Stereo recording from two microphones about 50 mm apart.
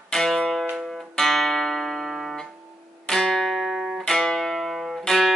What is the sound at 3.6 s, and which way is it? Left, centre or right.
Music, centre.